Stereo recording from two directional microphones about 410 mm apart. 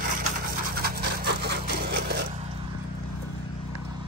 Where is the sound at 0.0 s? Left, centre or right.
Centre.